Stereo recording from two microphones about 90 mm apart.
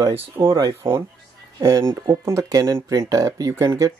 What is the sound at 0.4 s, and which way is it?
Speech, 25° right (ahead or behind).